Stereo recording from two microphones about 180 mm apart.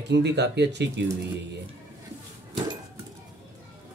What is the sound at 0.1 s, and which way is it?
Speech, 70° right (ahead or behind).